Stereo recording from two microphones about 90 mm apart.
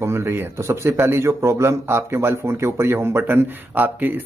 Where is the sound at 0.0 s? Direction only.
30° right (ahead or behind).